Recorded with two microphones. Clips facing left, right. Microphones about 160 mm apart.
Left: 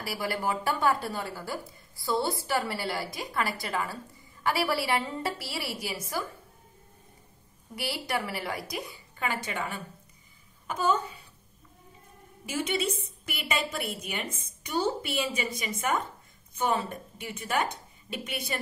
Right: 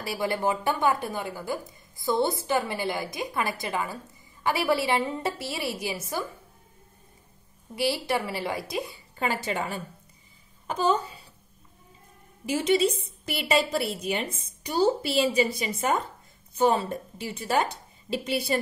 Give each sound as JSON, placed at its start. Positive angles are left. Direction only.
{"t": 0.0, "sound": "speech", "side_deg": -25}
{"t": 7.7, "sound": "a woman's voice", "side_deg": -25}
{"t": 12.4, "sound": "a woman's voice", "side_deg": -35}